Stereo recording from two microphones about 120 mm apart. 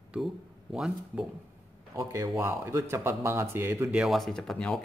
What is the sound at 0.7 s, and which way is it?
Speech, 5° right (ahead or behind).